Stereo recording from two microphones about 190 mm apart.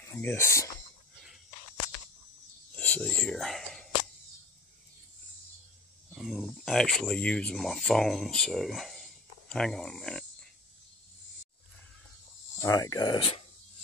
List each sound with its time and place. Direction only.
0.0 s speech: 10° left (ahead or behind)
2.7 s whispering: 5° left (ahead or behind)
6.1 s speech: centre (ahead or behind)
12.5 s speech: 15° left (ahead or behind)